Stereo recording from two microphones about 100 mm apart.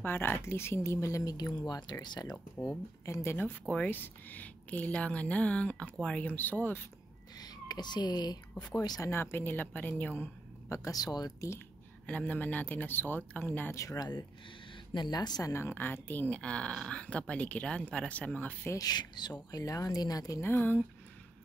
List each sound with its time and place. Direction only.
0.0 s speech: 20° left (ahead or behind); by 2.3 s 45° left (ahead or behind)
3.1 s speech: 25° left (ahead or behind)
7.3 s speech: 40° left (ahead or behind)
9.1 s a woman's voice: 20° left (ahead or behind)
10.8 s speech: 40° left (ahead or behind)
12.1 s speech: 15° left (ahead or behind); by 15.5 s 40° left (ahead or behind)
15.5 s speech: 25° left (ahead or behind)
18.7 s speech: 40° left (ahead or behind)
20.4 s speech: 20° left (ahead or behind)